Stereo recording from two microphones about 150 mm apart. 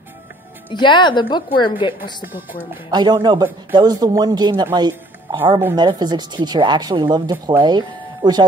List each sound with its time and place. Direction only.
0.7 s a woman's voice: 30° left (ahead or behind)
2.9 s speech: 30° right (ahead or behind)
4.7 s music: 30° right (ahead or behind)
5.8 s speech: 30° right (ahead or behind)